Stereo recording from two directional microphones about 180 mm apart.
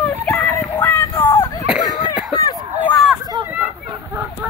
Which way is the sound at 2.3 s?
20° left (ahead or behind).